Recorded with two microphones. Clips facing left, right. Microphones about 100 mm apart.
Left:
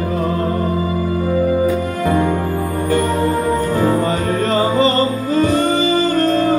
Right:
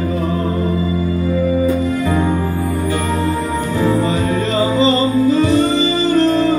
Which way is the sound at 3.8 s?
45° left (ahead or behind).